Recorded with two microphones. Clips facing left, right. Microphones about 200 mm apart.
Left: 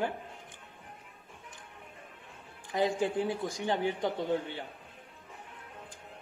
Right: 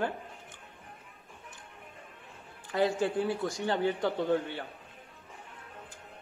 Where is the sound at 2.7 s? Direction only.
15° left (ahead or behind).